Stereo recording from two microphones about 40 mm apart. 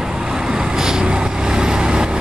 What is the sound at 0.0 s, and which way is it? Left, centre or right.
Vehicle, centre.